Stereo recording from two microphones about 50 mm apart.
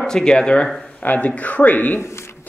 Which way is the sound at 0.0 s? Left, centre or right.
Centre.